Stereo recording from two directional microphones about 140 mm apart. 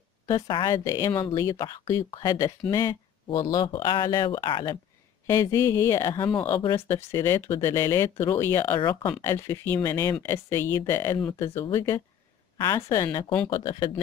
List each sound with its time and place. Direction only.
0.3 s speech: 30° left (ahead or behind)
5.2 s speech: 20° left (ahead or behind)